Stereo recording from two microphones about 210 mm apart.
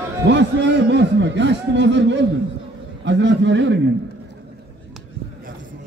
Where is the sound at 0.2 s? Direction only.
55° right (ahead or behind).